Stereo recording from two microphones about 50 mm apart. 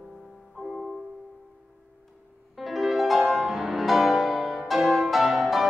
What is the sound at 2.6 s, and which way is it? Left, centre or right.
Music, centre.